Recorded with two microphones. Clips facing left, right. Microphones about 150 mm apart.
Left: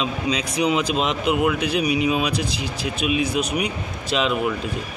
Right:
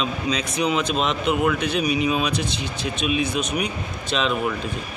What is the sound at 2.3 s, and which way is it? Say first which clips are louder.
Speech: left 1 dB; 25° right (ahead or behind).